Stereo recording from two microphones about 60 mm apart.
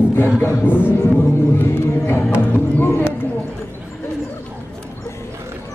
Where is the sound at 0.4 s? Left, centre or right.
Left.